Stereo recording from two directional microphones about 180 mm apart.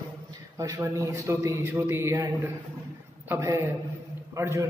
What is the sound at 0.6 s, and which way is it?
Speech, 20° right (ahead or behind).